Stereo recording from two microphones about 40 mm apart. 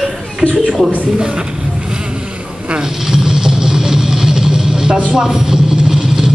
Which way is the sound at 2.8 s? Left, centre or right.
Centre.